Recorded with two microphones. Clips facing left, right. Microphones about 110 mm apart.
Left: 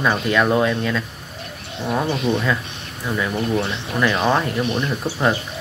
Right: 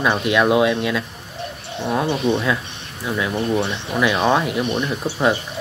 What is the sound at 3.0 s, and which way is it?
Speech, 5° right (ahead or behind).